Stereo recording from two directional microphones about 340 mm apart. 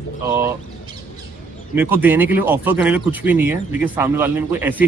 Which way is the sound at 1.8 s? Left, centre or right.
Centre.